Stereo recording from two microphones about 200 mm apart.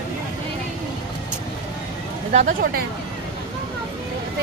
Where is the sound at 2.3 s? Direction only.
40° right (ahead or behind).